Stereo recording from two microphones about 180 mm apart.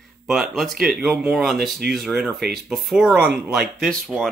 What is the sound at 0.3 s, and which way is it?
Speech, centre (ahead or behind).